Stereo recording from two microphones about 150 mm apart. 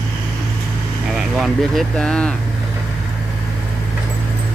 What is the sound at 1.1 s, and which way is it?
Speech, centre (ahead or behind).